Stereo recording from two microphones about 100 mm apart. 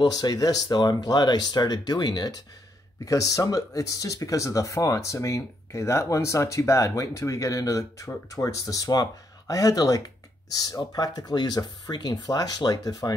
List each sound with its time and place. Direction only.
0.0 s speech: 40° left (ahead or behind)